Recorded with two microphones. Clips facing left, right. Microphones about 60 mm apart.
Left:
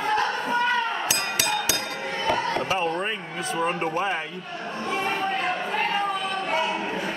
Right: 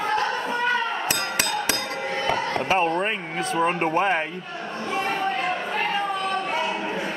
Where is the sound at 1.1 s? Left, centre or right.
Right.